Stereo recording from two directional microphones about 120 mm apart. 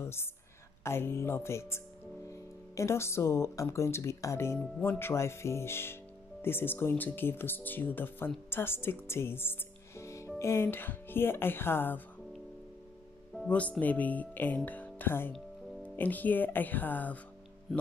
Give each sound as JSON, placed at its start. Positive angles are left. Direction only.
{"t": 0.0, "sound": "a woman's voice", "side_deg": 20}
{"t": 13.5, "sound": "speech", "side_deg": 10}